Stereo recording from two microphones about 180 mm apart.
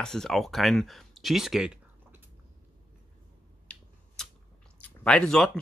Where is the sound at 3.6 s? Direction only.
5° left (ahead or behind).